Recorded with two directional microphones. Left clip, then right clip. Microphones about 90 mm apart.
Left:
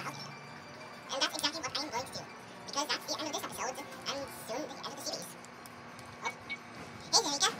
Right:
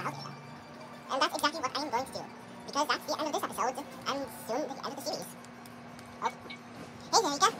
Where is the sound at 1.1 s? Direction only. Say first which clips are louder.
Right 4 dB; 10° right (ahead or behind).